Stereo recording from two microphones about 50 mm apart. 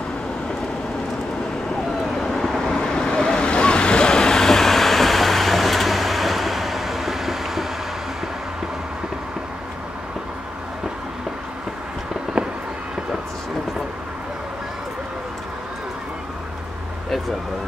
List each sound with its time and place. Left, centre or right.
2.1 s vehicle: centre
12.4 s fireworks: right